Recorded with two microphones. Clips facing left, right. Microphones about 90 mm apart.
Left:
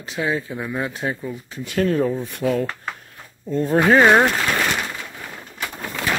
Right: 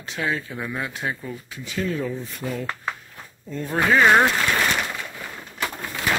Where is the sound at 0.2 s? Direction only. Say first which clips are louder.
Left 3 dB; 15° left (ahead or behind).